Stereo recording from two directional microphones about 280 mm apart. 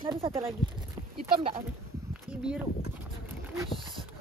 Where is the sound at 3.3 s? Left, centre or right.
Centre.